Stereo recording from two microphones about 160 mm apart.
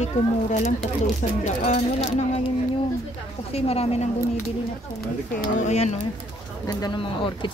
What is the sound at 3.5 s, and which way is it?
Speech, 40° left (ahead or behind).